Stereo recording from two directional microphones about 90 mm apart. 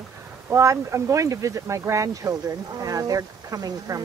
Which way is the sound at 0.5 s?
35° right (ahead or behind).